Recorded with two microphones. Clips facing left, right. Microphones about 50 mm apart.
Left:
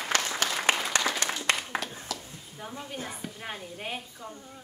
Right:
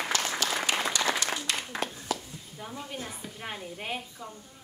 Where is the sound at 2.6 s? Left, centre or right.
Centre.